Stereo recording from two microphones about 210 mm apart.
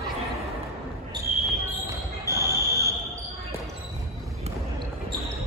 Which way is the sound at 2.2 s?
15° right (ahead or behind).